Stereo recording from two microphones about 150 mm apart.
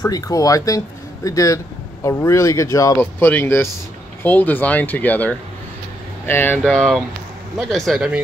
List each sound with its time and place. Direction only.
0.0 s speech: 25° left (ahead or behind)
6.6 s speech: centre (ahead or behind)